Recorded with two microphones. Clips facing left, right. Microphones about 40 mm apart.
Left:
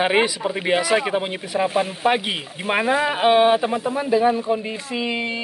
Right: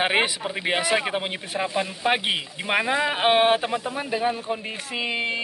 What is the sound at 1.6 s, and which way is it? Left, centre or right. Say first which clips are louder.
Speech: left 5 dB; left.